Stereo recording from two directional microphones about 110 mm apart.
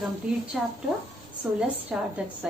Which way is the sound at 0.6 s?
5° right (ahead or behind).